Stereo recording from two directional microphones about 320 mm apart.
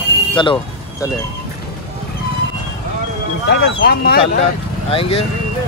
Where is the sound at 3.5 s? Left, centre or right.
Left.